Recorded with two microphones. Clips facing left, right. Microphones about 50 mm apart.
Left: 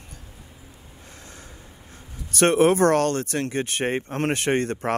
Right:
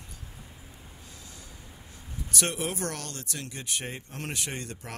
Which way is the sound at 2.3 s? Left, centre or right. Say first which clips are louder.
Left 14 dB; left.